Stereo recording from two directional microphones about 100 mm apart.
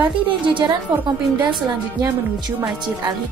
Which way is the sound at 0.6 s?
45° right (ahead or behind).